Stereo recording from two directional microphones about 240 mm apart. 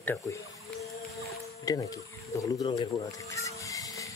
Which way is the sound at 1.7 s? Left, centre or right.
Centre.